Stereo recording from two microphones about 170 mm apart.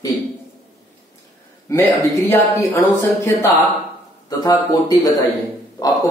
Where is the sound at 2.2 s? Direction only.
15° left (ahead or behind).